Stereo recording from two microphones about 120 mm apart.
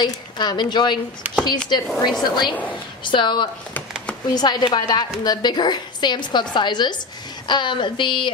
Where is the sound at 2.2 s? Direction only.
40° left (ahead or behind).